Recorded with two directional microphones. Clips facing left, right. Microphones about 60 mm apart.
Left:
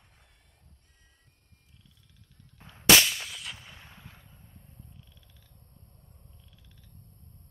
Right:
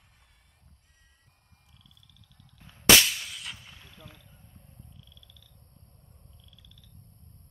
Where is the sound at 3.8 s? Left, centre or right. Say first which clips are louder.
Right 1 dB; left.